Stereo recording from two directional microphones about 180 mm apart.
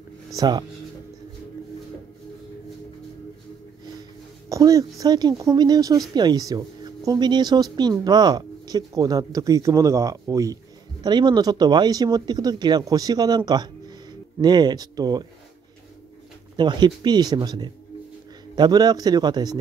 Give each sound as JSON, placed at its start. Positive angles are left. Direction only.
{"t": 0.4, "sound": "speech", "side_deg": -25}
{"t": 4.5, "sound": "speech", "side_deg": -20}
{"t": 13.5, "sound": "a sound", "side_deg": -25}
{"t": 14.4, "sound": "speech", "side_deg": -25}
{"t": 16.5, "sound": "speech", "side_deg": -25}